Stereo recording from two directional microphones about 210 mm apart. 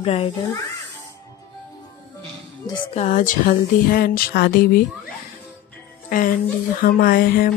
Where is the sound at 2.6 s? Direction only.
20° left (ahead or behind).